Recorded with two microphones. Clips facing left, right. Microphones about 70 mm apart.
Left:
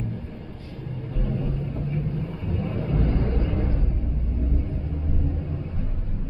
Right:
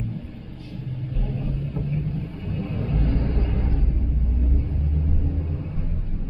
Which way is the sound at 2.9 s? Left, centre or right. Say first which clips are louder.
Left 2 dB; left.